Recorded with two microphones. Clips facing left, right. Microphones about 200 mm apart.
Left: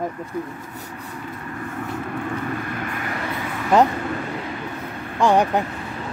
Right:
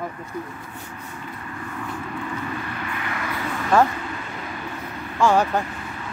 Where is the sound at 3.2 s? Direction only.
20° left (ahead or behind).